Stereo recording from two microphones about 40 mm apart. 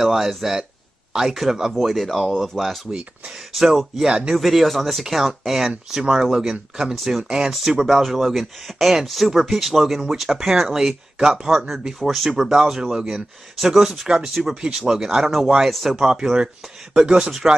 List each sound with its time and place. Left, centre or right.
0.0 s speech: centre
3.6 s speech: centre
5.9 s speech: centre
7.0 s speech: centre
7.2 s speech: centre
7.8 s speech: centre
11.1 s a man's voice: right
11.4 s speech: centre